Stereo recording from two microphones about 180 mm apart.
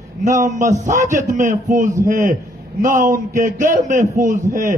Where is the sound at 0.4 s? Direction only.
40° right (ahead or behind).